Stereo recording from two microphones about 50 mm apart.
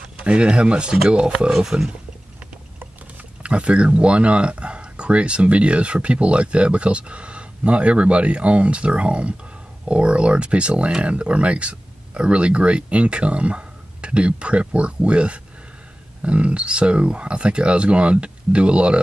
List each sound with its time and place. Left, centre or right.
0.2 s speech: right
3.4 s speech: right